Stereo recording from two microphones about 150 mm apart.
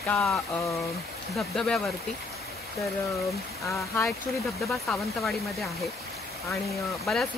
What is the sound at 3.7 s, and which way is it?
Speech, 20° left (ahead or behind).